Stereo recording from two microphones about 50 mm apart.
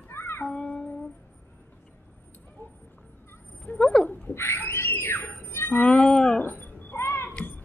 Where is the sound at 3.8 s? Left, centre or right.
Centre.